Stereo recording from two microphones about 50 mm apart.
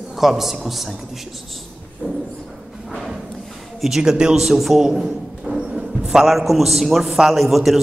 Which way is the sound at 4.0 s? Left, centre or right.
Centre.